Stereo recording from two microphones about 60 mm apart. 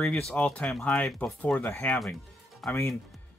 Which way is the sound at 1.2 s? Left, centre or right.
Left.